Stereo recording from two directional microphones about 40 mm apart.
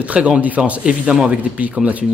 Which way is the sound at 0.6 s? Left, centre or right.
Right.